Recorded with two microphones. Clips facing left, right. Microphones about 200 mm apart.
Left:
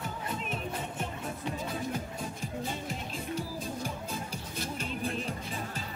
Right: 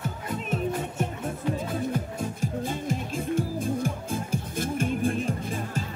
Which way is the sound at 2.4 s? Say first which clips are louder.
Right 7 dB; 45° right (ahead or behind).